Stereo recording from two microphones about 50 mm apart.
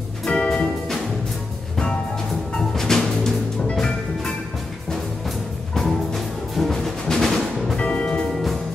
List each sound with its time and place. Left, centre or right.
0.2 s music: centre
2.7 s music: centre
5.8 s music: centre
7.8 s music: left